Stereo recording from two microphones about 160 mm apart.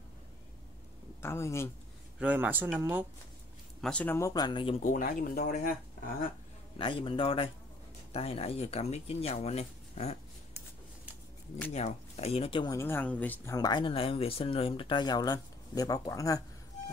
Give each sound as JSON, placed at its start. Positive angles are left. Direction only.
{"t": 1.2, "sound": "speech", "side_deg": 15}
{"t": 2.1, "sound": "speech", "side_deg": -10}
{"t": 3.8, "sound": "speech", "side_deg": 10}
{"t": 4.3, "sound": "speech", "side_deg": 25}
{"t": 4.8, "sound": "speech", "side_deg": 55}
{"t": 6.8, "sound": "speech", "side_deg": 35}
{"t": 11.7, "sound": "speech", "side_deg": 40}
{"t": 12.7, "sound": "speech", "side_deg": 15}
{"t": 13.6, "sound": "speech", "side_deg": 25}